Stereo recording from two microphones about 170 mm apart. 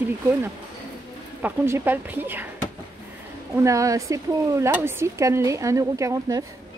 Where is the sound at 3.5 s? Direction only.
20° right (ahead or behind).